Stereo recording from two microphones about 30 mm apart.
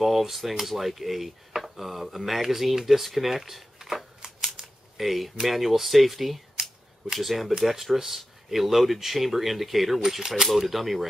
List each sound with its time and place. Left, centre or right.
0.0 s speech: centre
4.2 s scissors: right
4.6 s speech: centre
6.6 s camera: centre
7.5 s speech: centre